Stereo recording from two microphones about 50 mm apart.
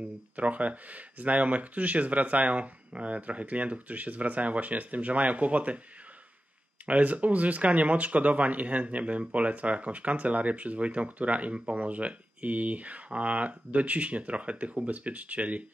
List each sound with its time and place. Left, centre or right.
0.4 s speech: right
6.9 s speech: right